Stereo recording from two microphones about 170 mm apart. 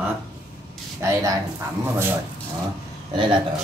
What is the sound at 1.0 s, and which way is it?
Speech, 15° right (ahead or behind).